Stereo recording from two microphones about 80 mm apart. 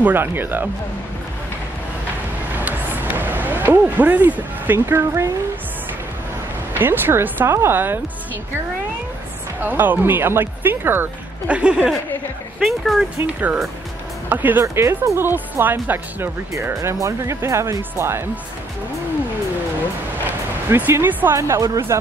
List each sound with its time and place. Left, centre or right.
0.0 s speech: right
2.5 s a sound: right
3.8 s speech: right
4.7 s speech: right
6.7 s speech: right
9.6 s speech: right
11.4 s speech: centre
12.5 s speech: centre
13.3 s speech: centre
14.6 s speech: right
21.0 s speech: right
21.4 s speech: right